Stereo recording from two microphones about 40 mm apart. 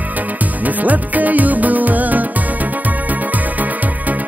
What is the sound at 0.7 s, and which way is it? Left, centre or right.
Music, right.